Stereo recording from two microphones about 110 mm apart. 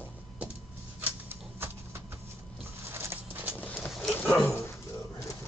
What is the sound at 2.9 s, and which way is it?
Patter, 25° right (ahead or behind).